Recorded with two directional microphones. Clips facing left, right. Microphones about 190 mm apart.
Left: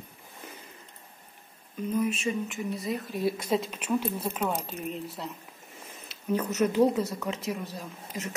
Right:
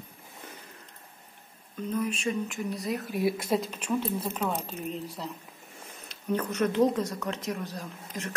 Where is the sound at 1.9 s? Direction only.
5° left (ahead or behind).